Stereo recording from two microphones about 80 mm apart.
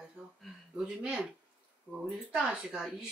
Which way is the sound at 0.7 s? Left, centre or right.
Centre.